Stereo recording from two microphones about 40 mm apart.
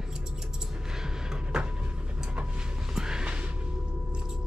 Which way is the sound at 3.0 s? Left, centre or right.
Centre.